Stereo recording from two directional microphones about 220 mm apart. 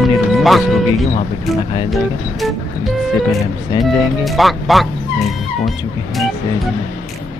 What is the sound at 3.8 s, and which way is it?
Speech, centre (ahead or behind).